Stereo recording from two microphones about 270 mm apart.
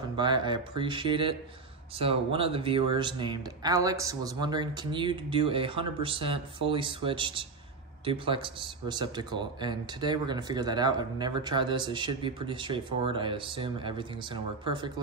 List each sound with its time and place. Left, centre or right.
0.1 s speech: centre